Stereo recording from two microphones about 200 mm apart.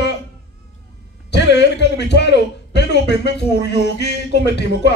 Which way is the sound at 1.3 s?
60° left (ahead or behind).